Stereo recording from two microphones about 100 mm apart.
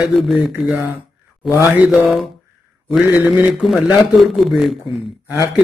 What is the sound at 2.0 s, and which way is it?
A man's voice, centre (ahead or behind).